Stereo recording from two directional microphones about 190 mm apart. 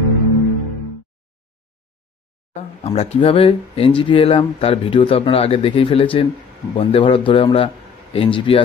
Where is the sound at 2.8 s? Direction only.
35° left (ahead or behind).